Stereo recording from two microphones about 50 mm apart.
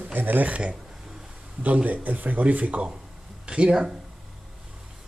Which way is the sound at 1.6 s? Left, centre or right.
Right.